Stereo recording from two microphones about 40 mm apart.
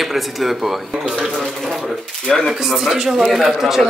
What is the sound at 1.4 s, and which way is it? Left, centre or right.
Speech, centre.